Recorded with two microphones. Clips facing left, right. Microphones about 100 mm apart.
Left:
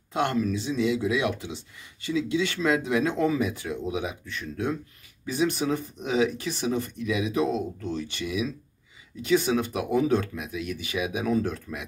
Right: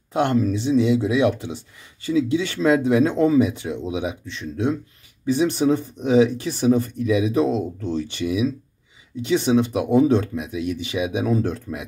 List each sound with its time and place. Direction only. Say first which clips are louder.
0.1 s speech: right 5 dB; 30° right (ahead or behind)